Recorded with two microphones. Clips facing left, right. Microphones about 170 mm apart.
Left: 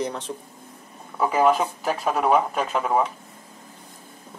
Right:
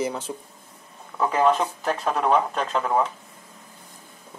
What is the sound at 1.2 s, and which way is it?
Speech, 10° left (ahead or behind).